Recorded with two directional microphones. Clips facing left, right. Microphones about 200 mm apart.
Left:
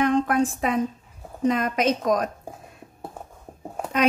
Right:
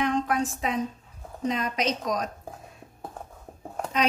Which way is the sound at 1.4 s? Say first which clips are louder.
Left 5 dB; 55° left (ahead or behind).